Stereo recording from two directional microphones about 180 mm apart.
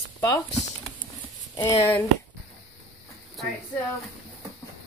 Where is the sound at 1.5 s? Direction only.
25° left (ahead or behind).